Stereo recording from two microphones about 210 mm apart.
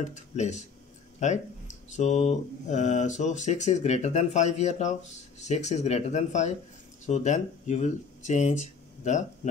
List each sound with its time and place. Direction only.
0.0 s speech: 35° left (ahead or behind)